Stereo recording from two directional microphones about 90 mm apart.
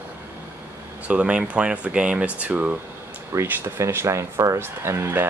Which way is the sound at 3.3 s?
30° right (ahead or behind).